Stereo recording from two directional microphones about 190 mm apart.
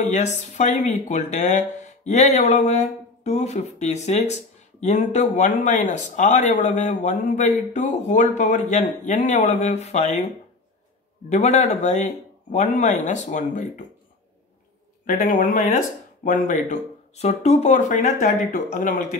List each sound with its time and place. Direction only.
0.0 s speech: 35° left (ahead or behind)
11.2 s speech: 35° left (ahead or behind)
15.0 s a man's voice: 45° left (ahead or behind)